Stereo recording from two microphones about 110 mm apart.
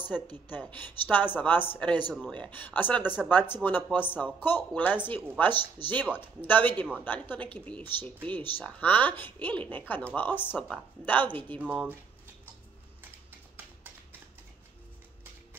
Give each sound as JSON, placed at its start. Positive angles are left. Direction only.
{"t": 0.5, "sound": "speech", "side_deg": 15}
{"t": 11.6, "sound": "speech", "side_deg": -10}